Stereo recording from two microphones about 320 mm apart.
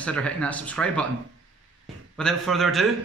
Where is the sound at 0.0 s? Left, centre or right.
Centre.